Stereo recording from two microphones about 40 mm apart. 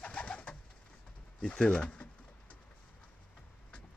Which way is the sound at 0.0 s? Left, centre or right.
Left.